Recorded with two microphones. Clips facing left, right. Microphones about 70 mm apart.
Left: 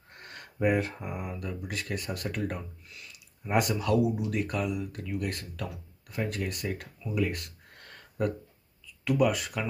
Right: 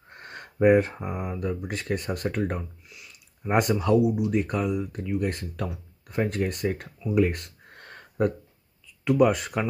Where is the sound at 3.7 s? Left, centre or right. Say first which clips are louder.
Right 5 dB; right.